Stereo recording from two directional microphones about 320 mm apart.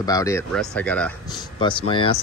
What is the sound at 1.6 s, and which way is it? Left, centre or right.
Speech, centre.